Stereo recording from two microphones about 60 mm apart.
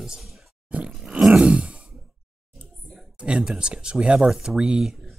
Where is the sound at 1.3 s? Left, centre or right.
Centre.